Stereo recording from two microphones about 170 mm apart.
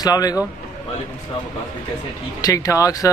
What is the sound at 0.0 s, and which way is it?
Speech, 20° left (ahead or behind).